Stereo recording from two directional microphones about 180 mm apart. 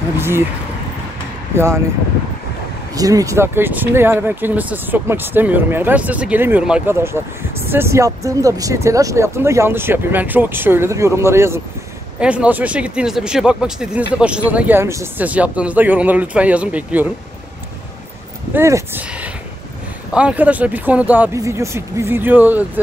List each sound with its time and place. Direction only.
0.2 s speech: 15° right (ahead or behind)
2.9 s speech: 20° right (ahead or behind)
18.5 s speech: 15° right (ahead or behind)